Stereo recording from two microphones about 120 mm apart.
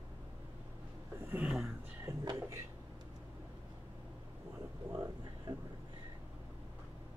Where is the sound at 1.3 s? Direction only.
5° right (ahead or behind).